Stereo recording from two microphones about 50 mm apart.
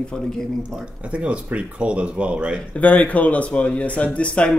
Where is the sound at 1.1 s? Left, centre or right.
Right.